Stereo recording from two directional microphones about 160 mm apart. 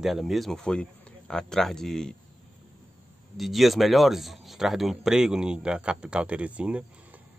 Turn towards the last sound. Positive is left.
turn(degrees=-10)  # may be behind; listen again after turning